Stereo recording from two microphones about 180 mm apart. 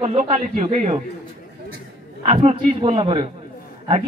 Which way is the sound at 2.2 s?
35° right (ahead or behind).